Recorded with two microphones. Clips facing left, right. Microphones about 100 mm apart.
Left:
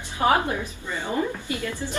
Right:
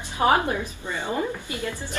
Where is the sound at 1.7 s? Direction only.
20° left (ahead or behind).